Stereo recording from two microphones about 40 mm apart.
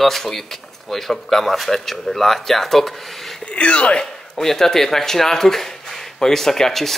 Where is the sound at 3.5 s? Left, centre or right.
Left.